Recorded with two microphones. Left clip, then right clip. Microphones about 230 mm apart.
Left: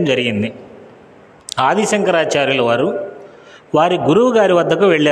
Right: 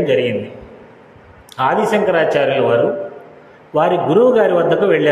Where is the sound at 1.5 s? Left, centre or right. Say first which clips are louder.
Even; left.